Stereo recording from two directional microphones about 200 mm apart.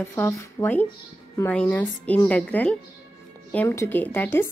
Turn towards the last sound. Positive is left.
turn(degrees=10)  # may be behind; listen again after turning